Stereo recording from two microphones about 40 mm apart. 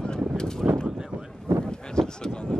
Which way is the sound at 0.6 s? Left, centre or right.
Centre.